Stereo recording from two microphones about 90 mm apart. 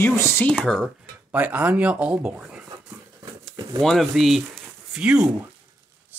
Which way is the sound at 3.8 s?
5° left (ahead or behind).